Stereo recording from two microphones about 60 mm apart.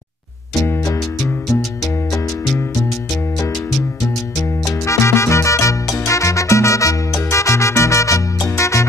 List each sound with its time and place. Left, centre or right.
4.6 s salsa music: left